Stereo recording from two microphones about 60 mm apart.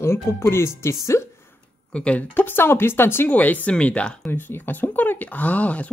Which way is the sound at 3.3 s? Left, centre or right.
Left.